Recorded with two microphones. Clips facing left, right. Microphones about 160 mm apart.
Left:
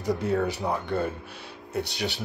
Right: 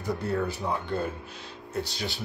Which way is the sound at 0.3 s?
75° left (ahead or behind).